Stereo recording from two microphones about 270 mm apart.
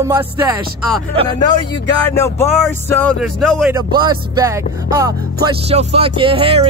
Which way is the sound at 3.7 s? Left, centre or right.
Centre.